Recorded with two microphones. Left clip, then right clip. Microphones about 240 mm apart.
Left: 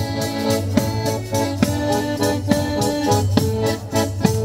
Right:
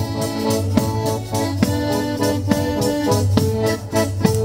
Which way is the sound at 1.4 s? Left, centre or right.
Left.